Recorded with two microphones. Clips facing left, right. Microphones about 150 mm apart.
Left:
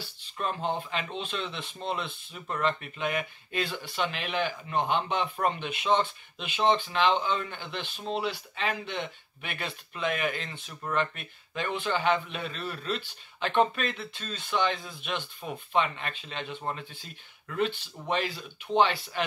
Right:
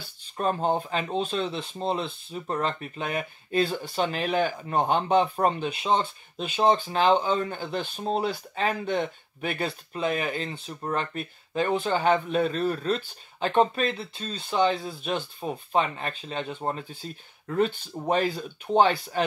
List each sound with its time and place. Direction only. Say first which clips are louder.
0.0 s speech: right 6 dB; 40° right (ahead or behind)